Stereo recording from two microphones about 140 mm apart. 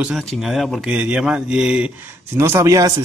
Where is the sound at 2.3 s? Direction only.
20° right (ahead or behind).